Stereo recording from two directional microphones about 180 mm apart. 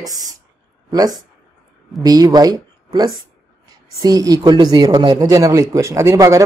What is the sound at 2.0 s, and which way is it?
Speech, 20° right (ahead or behind).